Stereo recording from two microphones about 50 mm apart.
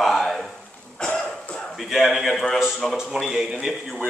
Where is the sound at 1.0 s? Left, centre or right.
Centre.